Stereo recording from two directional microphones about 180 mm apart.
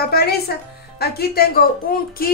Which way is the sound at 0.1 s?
60° left (ahead or behind).